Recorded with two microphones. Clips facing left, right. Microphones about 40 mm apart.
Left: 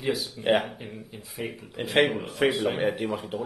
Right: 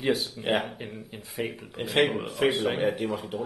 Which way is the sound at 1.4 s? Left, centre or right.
Right.